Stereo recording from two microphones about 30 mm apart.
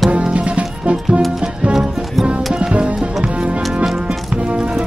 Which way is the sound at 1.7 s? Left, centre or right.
Centre.